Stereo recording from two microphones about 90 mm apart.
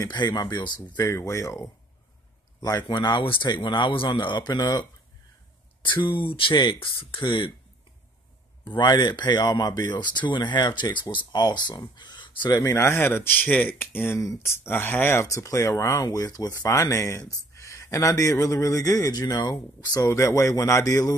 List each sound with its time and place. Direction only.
0.0 s speech: 50° left (ahead or behind)
1.0 s speech: 35° left (ahead or behind)
2.9 s speech: 55° left (ahead or behind)
5.8 s speech: 65° left (ahead or behind)
8.6 s speech: 55° left (ahead or behind)
12.5 s speech: 30° left (ahead or behind)
14.2 s speech: 35° left (ahead or behind)
15.2 s speech: 35° left (ahead or behind)